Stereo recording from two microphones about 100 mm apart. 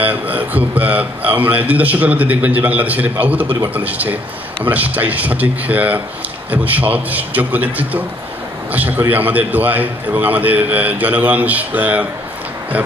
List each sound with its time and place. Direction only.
0.0 s a man's voice: 15° right (ahead or behind)